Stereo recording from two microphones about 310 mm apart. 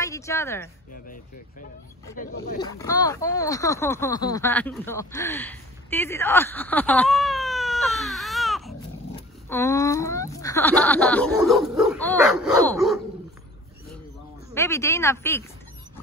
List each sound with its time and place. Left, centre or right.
0.0 s speech: centre
1.0 s speech: left
2.6 s speech: centre
14.5 s speech: centre